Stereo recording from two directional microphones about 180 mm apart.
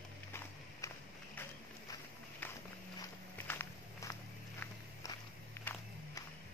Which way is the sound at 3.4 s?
15° left (ahead or behind).